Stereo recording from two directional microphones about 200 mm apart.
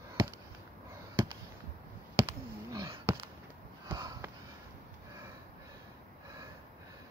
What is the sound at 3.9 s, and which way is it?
Sniff, 20° right (ahead or behind).